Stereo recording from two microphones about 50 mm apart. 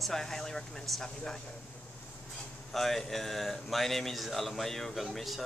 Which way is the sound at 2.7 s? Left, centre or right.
Centre.